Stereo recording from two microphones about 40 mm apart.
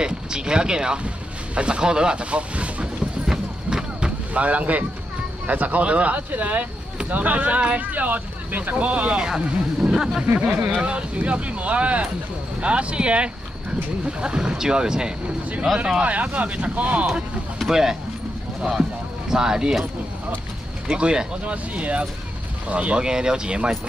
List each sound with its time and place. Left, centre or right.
0.0 s speech: right
3.3 s a sound: centre
4.3 s speech: right
9.2 s speech: centre
10.2 s speech: right; by 15.1 s centre
15.7 s speech: centre
16.0 s speech: right
17.6 s speech: centre
20.9 s speech: right
21.5 s speech: right
23.0 s speech: centre